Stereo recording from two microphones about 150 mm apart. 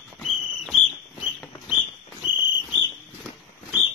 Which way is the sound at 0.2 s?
Centre (ahead or behind).